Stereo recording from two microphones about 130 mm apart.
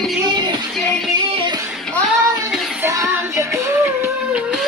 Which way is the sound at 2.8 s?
20° right (ahead or behind).